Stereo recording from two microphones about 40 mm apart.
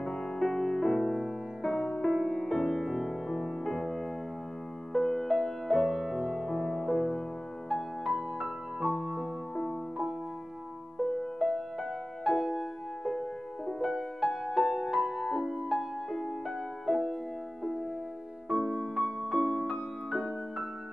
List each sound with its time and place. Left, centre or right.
0.0 s music: centre
1.6 s music: centre
5.3 s music: centre
5.8 s music: centre
7.7 s music: centre
11.3 s music: centre
15.0 s music: centre
18.5 s music: centre
19.4 s music: centre
19.7 s music: centre